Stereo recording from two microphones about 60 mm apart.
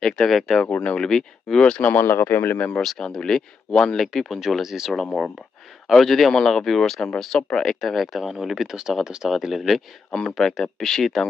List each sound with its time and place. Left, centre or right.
0.0 s speech: centre
0.8 s speech: centre
1.8 s speech: left
2.8 s speech: centre